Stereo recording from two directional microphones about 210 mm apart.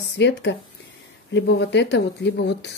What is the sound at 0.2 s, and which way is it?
Speech, 55° left (ahead or behind).